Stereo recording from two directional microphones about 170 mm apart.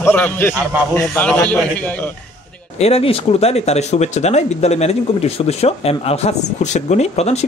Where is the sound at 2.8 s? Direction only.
35° left (ahead or behind).